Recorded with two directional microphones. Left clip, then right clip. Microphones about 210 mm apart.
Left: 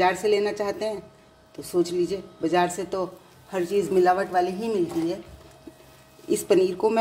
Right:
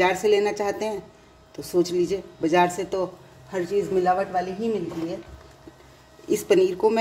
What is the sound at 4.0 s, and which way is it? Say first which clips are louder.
Speech: left 2 dB; 30° left (ahead or behind).